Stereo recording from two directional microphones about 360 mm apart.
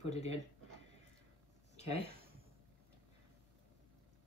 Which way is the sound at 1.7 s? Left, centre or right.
Centre.